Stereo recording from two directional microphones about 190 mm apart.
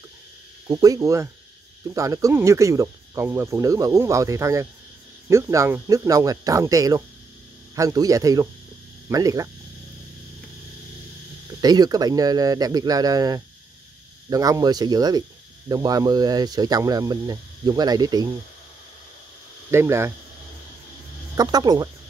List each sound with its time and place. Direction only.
0.7 s speech: 20° right (ahead or behind)
11.6 s speech: 20° right (ahead or behind)
19.7 s speech: 15° right (ahead or behind)
21.4 s speech: 20° right (ahead or behind)